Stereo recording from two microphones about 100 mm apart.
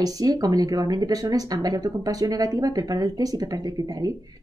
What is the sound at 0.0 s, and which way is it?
Speech, 40° right (ahead or behind).